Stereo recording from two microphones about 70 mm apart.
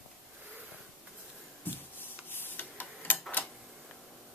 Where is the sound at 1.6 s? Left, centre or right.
Left.